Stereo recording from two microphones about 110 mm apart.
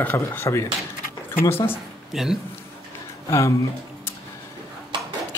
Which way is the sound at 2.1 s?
5° right (ahead or behind).